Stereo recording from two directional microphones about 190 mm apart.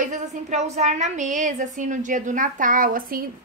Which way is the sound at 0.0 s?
40° right (ahead or behind).